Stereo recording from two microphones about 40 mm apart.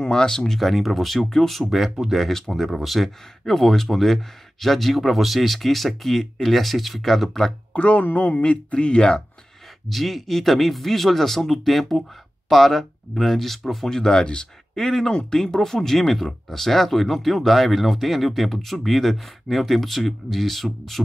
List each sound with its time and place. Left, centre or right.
0.0 s speech: centre
0.5 s speech: centre
1.6 s speech: centre
2.1 s speech: centre
7.7 s speech: left
9.8 s speech: centre
14.8 s speech: centre